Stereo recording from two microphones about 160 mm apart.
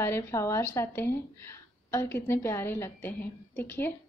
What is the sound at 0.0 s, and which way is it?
A woman's voice, 15° left (ahead or behind).